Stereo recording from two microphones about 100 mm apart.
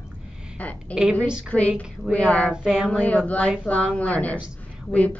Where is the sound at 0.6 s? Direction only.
15° left (ahead or behind).